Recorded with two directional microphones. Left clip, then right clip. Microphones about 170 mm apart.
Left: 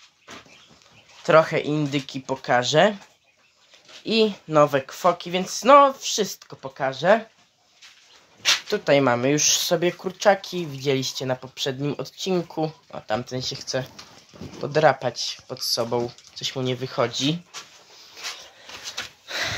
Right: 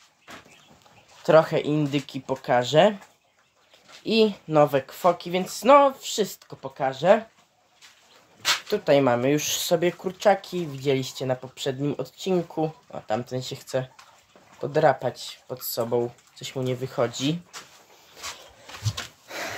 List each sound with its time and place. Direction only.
1.2 s speech: 25° right (ahead or behind)
4.0 s speech: 15° right (ahead or behind)
8.6 s speech: 5° right (ahead or behind)
14.6 s speech: 5° right (ahead or behind)
19.2 s a sound: 20° right (ahead or behind)